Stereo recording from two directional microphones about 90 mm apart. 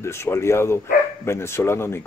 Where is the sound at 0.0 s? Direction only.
30° left (ahead or behind).